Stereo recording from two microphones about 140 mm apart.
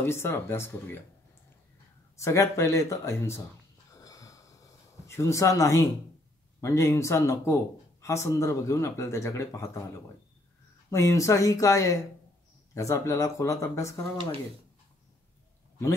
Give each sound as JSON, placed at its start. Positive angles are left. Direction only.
{"t": 0.0, "sound": "speech", "side_deg": 15}
{"t": 2.1, "sound": "speech", "side_deg": 20}
{"t": 3.9, "sound": "a sound", "side_deg": 25}
{"t": 6.6, "sound": "speech", "side_deg": 20}
{"t": 10.9, "sound": "speech", "side_deg": 20}